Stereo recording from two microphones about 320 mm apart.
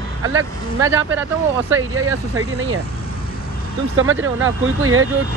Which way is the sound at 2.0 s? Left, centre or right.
Right.